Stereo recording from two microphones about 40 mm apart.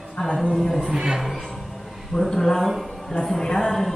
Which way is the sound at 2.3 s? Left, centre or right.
Centre.